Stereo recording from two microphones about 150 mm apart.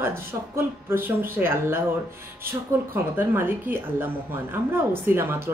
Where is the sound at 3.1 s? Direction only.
15° right (ahead or behind).